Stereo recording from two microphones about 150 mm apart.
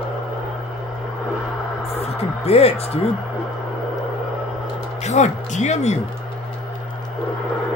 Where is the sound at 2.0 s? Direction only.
45° left (ahead or behind).